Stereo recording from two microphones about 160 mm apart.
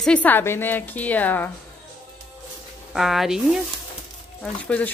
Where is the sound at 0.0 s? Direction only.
10° left (ahead or behind).